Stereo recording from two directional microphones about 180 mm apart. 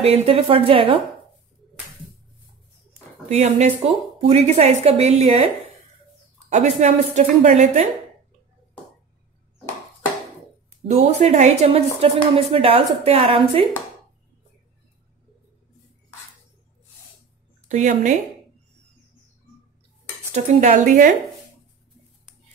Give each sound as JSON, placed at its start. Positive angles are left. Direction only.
{"t": 0.0, "sound": "a woman's voice", "side_deg": -35}
{"t": 3.3, "sound": "a woman's voice", "side_deg": -35}
{"t": 6.5, "sound": "a woman's voice", "side_deg": -40}
{"t": 10.9, "sound": "a woman's voice", "side_deg": -35}
{"t": 17.6, "sound": "speech", "side_deg": -45}
{"t": 20.3, "sound": "a woman's voice", "side_deg": -45}